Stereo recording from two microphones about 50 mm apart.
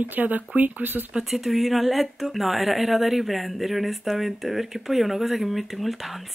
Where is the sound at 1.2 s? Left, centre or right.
Centre.